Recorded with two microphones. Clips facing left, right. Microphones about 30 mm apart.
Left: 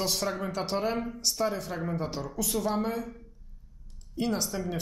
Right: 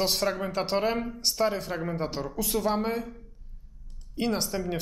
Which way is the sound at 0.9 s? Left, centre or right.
Centre.